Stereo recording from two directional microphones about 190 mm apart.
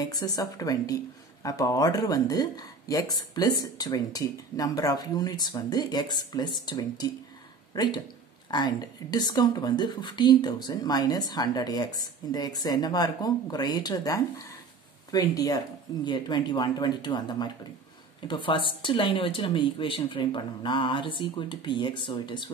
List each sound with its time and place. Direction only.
0.0 s speech: 20° left (ahead or behind)